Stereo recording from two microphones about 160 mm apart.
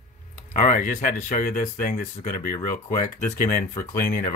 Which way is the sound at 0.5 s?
55° left (ahead or behind).